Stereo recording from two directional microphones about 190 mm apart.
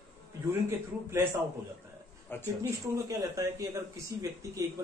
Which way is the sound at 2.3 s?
10° left (ahead or behind).